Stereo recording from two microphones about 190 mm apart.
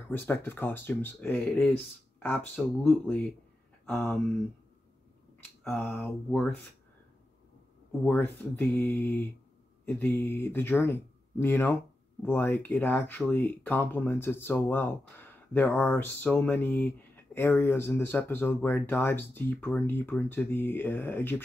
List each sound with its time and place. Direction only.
0.1 s speech: 10° left (ahead or behind)
2.5 s speech: 5° left (ahead or behind)
5.6 s speech: 10° left (ahead or behind)
8.0 s speech: 10° left (ahead or behind)